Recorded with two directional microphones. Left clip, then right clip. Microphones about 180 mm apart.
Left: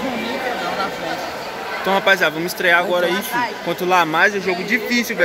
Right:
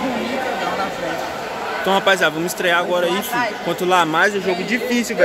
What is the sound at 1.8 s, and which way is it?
A man's voice, centre (ahead or behind).